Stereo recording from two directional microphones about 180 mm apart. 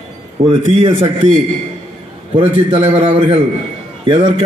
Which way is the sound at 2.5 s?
30° right (ahead or behind).